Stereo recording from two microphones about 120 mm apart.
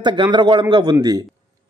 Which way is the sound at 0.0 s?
40° right (ahead or behind).